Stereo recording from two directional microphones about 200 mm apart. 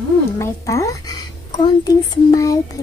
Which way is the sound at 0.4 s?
15° left (ahead or behind).